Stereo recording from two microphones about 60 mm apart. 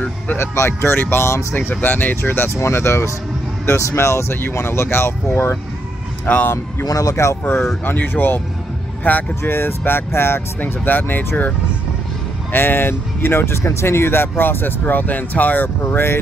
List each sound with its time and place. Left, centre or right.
0.4 s speech: left
2.5 s speech: left
6.3 s speech: left
6.8 s speech: left
7.4 s speech: left
9.4 s speech: left
12.5 s speech: left